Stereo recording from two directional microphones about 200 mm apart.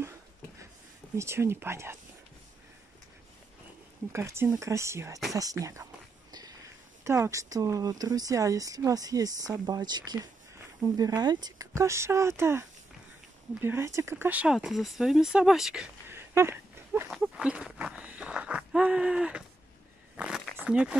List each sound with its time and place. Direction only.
1.1 s speech: 15° right (ahead or behind)
4.1 s speech: 15° right (ahead or behind)
7.1 s speech: 15° right (ahead or behind)
20.2 s zipper: 5° right (ahead or behind)